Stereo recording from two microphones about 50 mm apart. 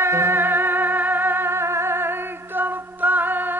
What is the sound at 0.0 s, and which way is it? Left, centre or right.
Music, right.